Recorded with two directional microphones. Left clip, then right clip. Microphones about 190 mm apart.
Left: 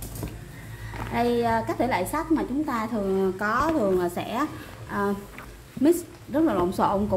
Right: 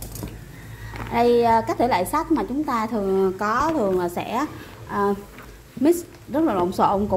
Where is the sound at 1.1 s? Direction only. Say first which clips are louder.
Right 7 dB; 15° right (ahead or behind).